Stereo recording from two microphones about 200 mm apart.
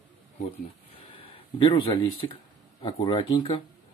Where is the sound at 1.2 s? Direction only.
25° left (ahead or behind).